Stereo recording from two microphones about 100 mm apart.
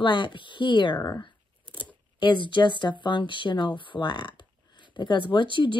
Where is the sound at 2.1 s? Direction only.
55° left (ahead or behind).